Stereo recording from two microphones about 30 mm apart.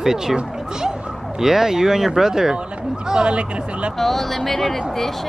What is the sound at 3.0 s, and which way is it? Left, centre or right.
Speech, right.